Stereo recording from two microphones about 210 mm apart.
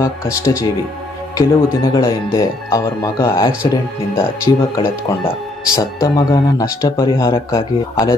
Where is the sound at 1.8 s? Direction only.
15° left (ahead or behind).